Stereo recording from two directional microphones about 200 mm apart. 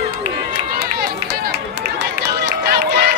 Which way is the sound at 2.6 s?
50° right (ahead or behind).